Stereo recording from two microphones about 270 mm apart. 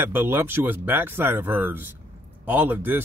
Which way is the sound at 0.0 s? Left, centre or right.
Centre.